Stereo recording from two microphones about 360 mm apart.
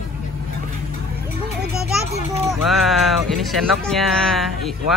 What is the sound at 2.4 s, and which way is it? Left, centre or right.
Music, centre.